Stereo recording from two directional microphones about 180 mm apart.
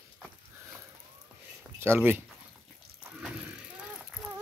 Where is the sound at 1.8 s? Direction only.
10° right (ahead or behind).